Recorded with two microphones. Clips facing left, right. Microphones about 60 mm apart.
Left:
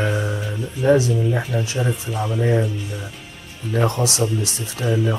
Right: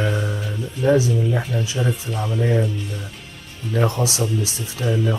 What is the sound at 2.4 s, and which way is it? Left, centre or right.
Speech, centre.